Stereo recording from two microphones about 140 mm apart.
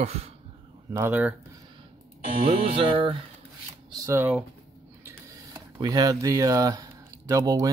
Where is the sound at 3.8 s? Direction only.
25° right (ahead or behind).